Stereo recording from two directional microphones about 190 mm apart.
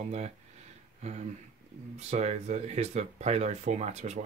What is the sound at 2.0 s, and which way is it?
Speech, 35° right (ahead or behind).